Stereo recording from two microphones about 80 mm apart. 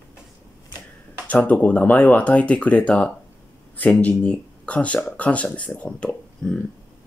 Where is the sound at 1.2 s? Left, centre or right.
Centre.